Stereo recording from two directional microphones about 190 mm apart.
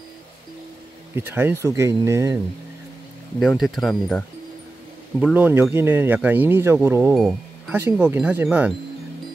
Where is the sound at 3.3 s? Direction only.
Centre (ahead or behind).